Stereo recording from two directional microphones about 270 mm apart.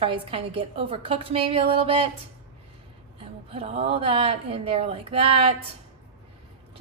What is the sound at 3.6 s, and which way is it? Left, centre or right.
A woman's voice, right.